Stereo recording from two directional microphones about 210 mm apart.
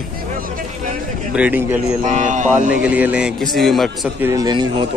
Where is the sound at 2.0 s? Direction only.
35° right (ahead or behind).